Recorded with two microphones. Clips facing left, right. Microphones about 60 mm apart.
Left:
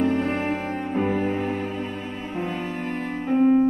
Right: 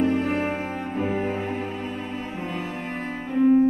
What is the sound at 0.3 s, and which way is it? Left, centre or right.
Music, centre.